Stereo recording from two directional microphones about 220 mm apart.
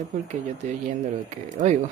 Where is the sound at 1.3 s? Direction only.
35° right (ahead or behind).